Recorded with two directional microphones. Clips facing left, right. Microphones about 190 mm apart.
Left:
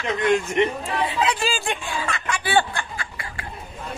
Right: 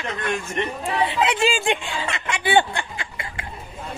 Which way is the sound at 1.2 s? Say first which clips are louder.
Right 3 dB; 25° right (ahead or behind).